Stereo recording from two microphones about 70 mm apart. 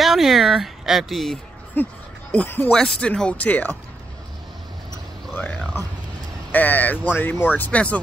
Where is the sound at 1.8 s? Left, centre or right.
Left.